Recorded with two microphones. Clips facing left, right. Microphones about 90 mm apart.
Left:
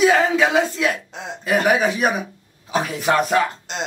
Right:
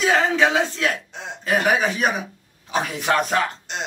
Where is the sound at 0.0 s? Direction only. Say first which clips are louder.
Left 3 dB; 10° left (ahead or behind).